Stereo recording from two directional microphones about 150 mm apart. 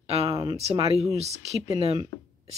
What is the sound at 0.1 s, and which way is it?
Speech, 40° right (ahead or behind).